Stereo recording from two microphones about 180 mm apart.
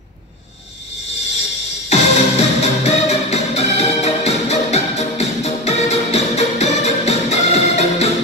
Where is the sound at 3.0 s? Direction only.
35° left (ahead or behind).